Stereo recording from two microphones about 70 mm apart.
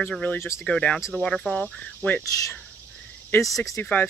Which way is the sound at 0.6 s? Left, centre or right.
Centre.